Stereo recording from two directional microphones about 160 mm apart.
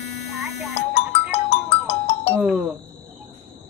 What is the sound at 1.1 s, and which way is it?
Music, 40° left (ahead or behind).